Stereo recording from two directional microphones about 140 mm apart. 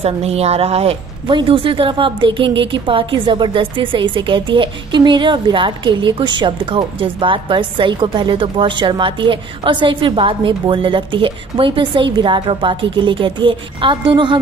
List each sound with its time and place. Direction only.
0.0 s a woman's voice: 50° right (ahead or behind)